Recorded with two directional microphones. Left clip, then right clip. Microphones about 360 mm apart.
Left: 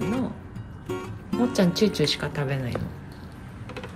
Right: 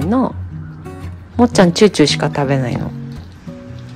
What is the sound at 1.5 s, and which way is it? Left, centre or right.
Speech, centre.